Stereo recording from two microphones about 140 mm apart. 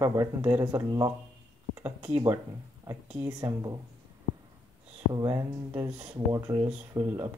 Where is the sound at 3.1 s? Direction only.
20° right (ahead or behind).